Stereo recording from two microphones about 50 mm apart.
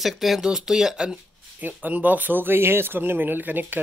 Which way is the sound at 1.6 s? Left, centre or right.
Right.